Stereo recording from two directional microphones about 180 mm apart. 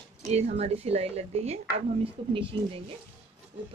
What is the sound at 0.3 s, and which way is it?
A woman's voice, 35° right (ahead or behind).